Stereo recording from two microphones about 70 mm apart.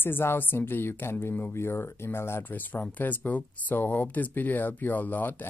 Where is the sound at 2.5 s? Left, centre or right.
Left.